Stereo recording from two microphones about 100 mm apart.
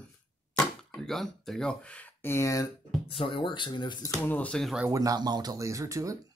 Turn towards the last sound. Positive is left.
turn(degrees=-35)  # may be behind; listen again after turning